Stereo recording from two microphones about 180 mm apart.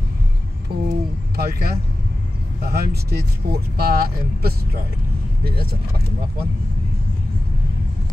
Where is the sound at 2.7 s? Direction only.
60° right (ahead or behind).